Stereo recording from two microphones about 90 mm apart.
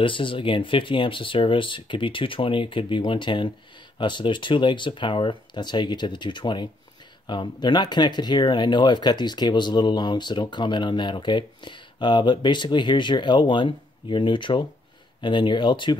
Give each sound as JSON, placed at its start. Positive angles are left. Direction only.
{"t": 0.0, "sound": "speech", "side_deg": 70}